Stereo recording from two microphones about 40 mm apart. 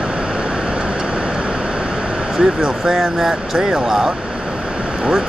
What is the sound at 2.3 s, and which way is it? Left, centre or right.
Speech, centre.